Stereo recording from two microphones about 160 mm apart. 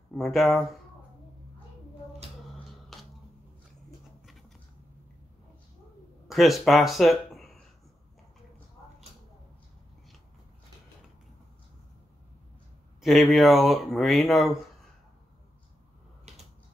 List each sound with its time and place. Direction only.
0.1 s speech: centre (ahead or behind)
2.9 s a sound: centre (ahead or behind)
6.2 s speech: centre (ahead or behind)
13.0 s speech: centre (ahead or behind)
16.3 s typewriter: 40° right (ahead or behind)